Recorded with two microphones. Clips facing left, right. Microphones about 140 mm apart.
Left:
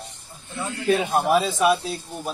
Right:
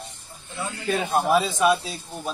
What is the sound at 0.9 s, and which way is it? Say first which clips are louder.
Speech: left 2 dB; 15° left (ahead or behind).